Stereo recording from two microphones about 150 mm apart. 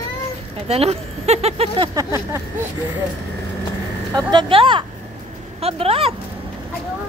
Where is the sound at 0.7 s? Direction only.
45° right (ahead or behind).